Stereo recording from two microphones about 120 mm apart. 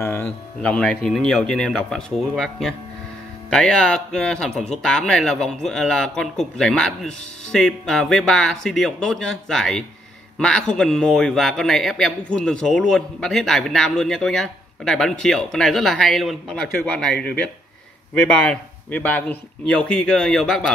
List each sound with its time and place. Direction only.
0.0 s speech: 20° left (ahead or behind)
0.6 s speech: 10° left (ahead or behind)